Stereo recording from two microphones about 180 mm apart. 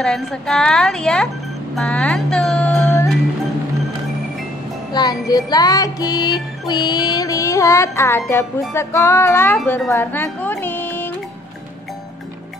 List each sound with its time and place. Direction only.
0.0 s a woman's voice: 5° left (ahead or behind)
1.8 s music: 5° left (ahead or behind)
4.9 s music: 20° left (ahead or behind)
9.7 s speech: 10° left (ahead or behind)